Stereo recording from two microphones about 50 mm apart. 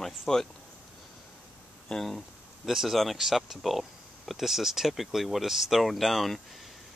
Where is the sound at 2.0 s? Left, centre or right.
Centre.